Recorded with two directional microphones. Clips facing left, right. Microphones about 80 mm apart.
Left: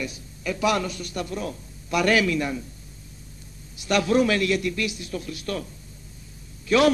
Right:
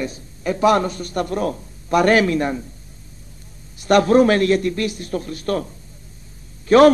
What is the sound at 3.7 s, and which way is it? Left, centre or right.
A man's voice, right.